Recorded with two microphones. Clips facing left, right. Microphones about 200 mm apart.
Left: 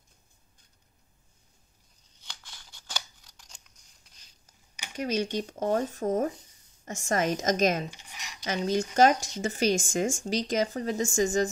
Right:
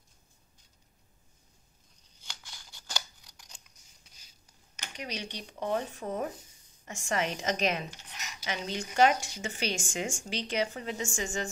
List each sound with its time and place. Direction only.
2.2 s scissors: centre (ahead or behind)
4.9 s speech: 45° left (ahead or behind)
7.9 s a sound: 10° left (ahead or behind)
8.5 s speech: 40° left (ahead or behind)